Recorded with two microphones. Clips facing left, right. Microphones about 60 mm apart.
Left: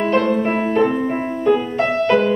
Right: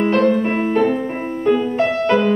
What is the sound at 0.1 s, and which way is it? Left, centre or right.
Music, centre.